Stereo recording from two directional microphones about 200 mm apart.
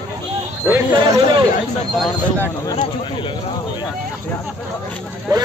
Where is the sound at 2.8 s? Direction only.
25° left (ahead or behind).